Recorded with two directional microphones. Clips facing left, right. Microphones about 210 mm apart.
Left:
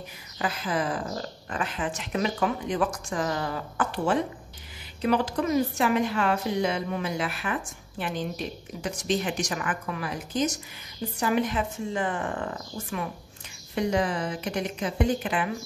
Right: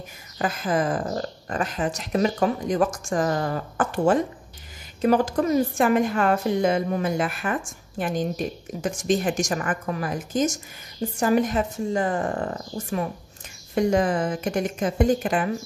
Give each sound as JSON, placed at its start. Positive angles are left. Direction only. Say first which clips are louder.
{"t": 0.4, "sound": "a woman's voice", "louder": "right 4 dB", "side_deg": -50}